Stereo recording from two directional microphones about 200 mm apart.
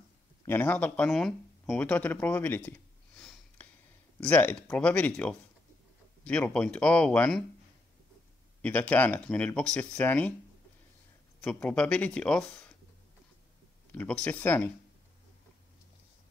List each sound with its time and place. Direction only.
0.5 s speech: 10° left (ahead or behind)
3.2 s sniff: 5° left (ahead or behind)
4.2 s speech: 10° left (ahead or behind)
8.6 s speech: 5° left (ahead or behind)
11.4 s speech: 5° left (ahead or behind)
13.9 s speech: 5° left (ahead or behind)